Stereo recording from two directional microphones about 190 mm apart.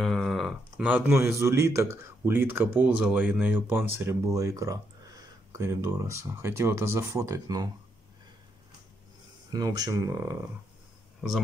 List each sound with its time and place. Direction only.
0.0 s speech: centre (ahead or behind); by 7.7 s 20° right (ahead or behind)
9.5 s speech: 20° right (ahead or behind)
11.1 s speech: centre (ahead or behind)